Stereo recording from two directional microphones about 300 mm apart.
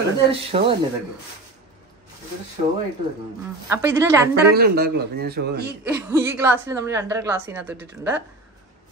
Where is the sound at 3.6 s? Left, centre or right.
Centre.